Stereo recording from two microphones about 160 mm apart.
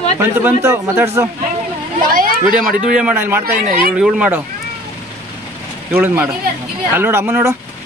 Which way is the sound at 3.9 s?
5° right (ahead or behind).